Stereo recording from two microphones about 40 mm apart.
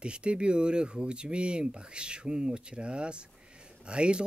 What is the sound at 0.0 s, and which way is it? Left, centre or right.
Speech, right.